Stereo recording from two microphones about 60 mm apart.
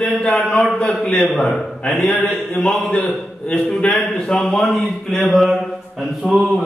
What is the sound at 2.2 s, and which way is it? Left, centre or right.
A man's voice, centre.